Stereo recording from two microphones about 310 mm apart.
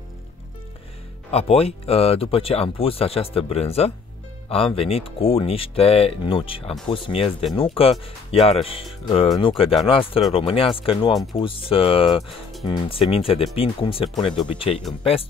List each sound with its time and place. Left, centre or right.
1.3 s speech: centre